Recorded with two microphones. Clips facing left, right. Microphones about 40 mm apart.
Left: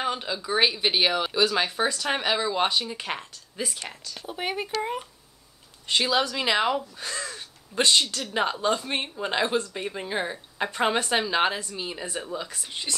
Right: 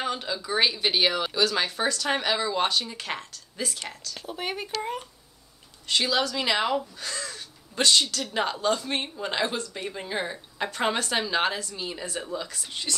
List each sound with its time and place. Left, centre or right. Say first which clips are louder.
0.0 s speech: left 1 dB; centre
7.0 s crow: left 1 dB; centre
8.2 s speech: left 1 dB; centre